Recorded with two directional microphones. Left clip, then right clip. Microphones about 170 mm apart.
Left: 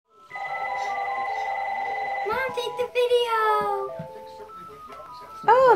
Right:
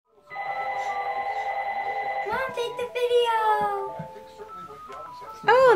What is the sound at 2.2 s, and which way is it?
A child's voice, 25° right (ahead or behind).